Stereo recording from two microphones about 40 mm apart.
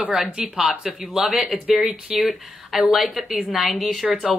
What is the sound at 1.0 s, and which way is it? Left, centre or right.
A woman's voice, centre.